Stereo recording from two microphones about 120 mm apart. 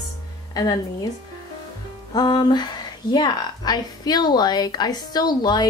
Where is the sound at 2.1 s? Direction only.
35° left (ahead or behind).